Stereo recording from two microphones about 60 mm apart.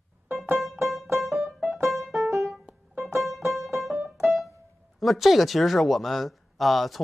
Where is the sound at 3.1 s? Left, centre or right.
Centre.